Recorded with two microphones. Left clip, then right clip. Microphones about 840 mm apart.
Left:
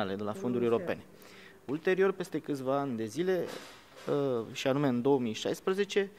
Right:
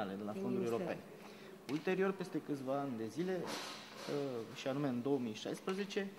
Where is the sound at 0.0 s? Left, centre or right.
Left.